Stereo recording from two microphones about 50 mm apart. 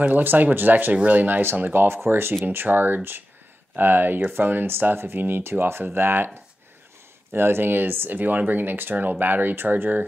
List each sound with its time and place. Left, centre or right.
0.0 s speech: right
7.3 s speech: right